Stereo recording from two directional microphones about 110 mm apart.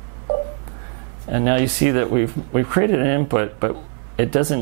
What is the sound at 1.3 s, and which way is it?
Speech, 10° right (ahead or behind).